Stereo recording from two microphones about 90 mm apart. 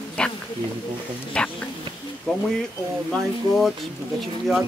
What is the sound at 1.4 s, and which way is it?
Speech, 10° left (ahead or behind).